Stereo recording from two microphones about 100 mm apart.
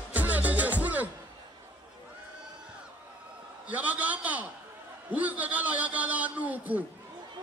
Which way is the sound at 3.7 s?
15° right (ahead or behind).